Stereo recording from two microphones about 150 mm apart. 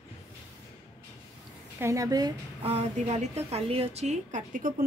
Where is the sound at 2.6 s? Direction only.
45° right (ahead or behind).